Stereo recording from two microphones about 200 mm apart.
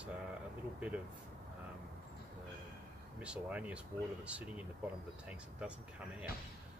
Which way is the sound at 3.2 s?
5° right (ahead or behind).